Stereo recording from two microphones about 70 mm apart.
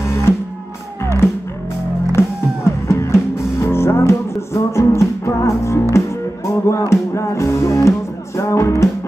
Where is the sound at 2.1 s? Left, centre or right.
Left.